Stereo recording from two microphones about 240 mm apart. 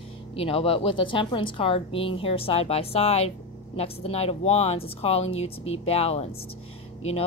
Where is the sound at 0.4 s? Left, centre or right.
Left.